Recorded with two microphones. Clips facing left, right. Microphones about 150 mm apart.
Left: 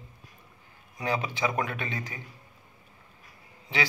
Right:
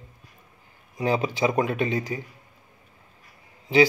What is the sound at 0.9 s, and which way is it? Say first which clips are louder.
A man's voice: right 6 dB; 30° right (ahead or behind).